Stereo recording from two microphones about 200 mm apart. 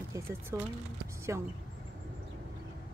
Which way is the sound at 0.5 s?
15° right (ahead or behind).